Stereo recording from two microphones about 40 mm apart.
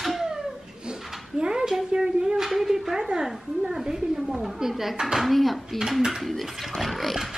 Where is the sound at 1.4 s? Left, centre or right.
Centre.